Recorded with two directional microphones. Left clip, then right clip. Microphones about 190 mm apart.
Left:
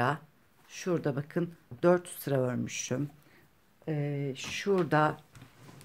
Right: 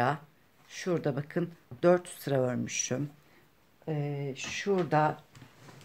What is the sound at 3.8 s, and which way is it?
Speech, 20° left (ahead or behind).